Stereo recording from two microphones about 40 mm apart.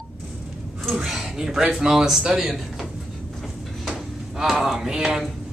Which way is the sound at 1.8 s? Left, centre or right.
Centre.